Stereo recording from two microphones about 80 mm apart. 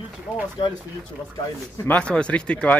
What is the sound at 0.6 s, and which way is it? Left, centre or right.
Speech, left.